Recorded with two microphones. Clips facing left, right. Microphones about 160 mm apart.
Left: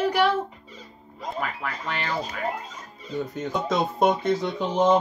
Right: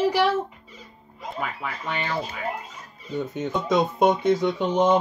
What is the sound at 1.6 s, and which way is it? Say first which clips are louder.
Speech: right 1 dB; centre (ahead or behind).